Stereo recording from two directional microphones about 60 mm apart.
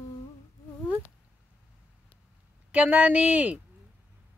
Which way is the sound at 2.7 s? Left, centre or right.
Right.